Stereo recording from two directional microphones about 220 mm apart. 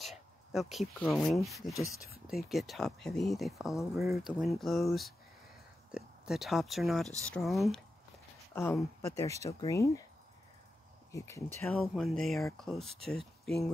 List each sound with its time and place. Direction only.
0.0 s speech: centre (ahead or behind); by 10.0 s 15° left (ahead or behind)
11.1 s speech: 15° left (ahead or behind)
11.8 s speech: centre (ahead or behind)